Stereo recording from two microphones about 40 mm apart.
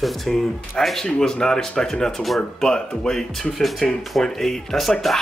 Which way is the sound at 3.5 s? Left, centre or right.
Centre.